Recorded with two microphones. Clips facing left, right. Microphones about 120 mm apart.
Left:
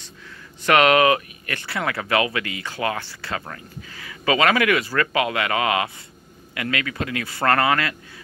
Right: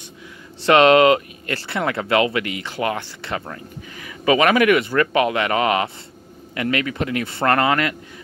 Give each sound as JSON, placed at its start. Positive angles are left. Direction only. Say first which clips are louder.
{"t": 0.7, "sound": "speech", "louder": "right 4 dB", "side_deg": -25}